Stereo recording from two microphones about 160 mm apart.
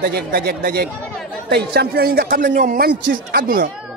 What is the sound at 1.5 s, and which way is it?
Speech, 90° right.